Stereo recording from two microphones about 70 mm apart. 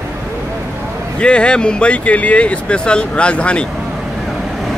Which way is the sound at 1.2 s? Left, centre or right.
Centre.